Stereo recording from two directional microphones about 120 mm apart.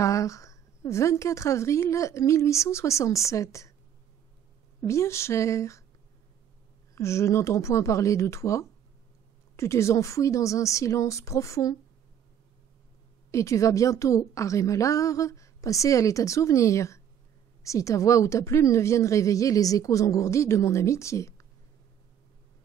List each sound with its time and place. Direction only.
0.0 s a woman's voice: 25° left (ahead or behind)
4.8 s a woman's voice: 25° left (ahead or behind)
7.0 s a woman's voice: 25° left (ahead or behind)
13.3 s a woman's voice: 25° left (ahead or behind)